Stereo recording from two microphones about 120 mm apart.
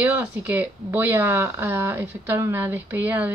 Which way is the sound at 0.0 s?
15° right (ahead or behind).